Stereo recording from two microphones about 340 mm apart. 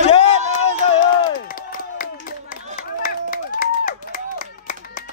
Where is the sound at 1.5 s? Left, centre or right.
Left.